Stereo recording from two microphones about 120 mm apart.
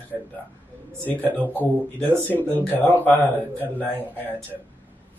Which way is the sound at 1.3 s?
10° left (ahead or behind).